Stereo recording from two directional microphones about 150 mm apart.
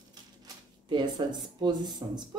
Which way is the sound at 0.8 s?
30° right (ahead or behind).